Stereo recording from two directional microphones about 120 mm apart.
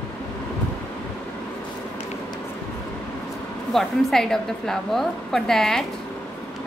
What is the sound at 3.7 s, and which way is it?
A woman's voice, centre (ahead or behind).